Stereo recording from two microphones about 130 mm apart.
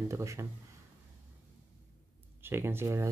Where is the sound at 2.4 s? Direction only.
15° right (ahead or behind).